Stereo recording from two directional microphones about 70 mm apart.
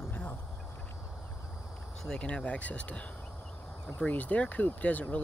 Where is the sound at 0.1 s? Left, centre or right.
Left.